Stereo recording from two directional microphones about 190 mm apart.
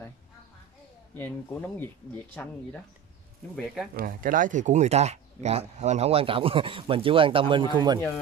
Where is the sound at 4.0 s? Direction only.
45° right (ahead or behind); by 8.0 s 25° right (ahead or behind).